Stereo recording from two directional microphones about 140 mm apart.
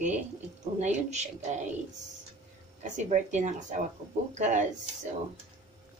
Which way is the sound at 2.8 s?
60° right (ahead or behind).